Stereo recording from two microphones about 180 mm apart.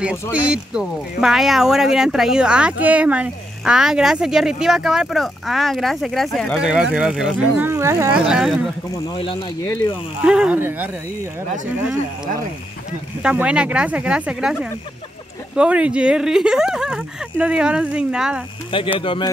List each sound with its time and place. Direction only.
0.0 s speech: 5° right (ahead or behind)
8.3 s speech: centre (ahead or behind)
8.9 s speech: 20° left (ahead or behind)
10.2 s speech: 5° right (ahead or behind)
13.2 s speech: 5° right (ahead or behind)
18.9 s a man's voice: 25° left (ahead or behind)